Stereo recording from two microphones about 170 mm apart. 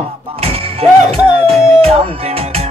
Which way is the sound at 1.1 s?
5° right (ahead or behind).